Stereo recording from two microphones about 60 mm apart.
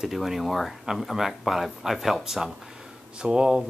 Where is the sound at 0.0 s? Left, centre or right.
Centre.